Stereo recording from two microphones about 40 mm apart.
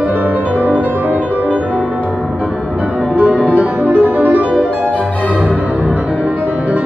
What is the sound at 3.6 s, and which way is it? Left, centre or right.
Music, right.